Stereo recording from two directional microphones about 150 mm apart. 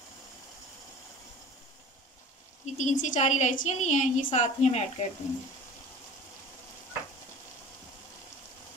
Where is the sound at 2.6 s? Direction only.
55° left (ahead or behind).